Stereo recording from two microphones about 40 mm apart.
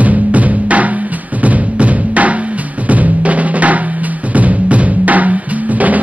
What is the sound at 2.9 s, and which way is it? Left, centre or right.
Drum, right.